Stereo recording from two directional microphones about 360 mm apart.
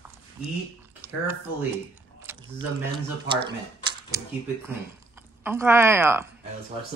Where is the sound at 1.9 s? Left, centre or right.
Centre.